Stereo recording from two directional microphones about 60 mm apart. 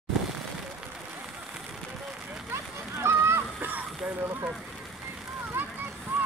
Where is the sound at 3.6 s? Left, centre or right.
Right.